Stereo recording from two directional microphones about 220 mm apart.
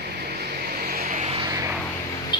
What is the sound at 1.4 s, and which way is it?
Vehicle, 15° right (ahead or behind).